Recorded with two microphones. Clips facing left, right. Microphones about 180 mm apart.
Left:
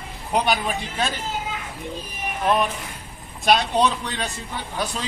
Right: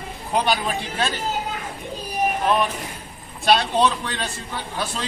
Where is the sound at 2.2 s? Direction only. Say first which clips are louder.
Right 10 dB; 40° right (ahead or behind).